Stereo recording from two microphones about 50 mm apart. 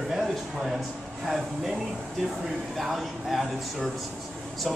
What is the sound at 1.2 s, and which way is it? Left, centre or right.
Speech, centre.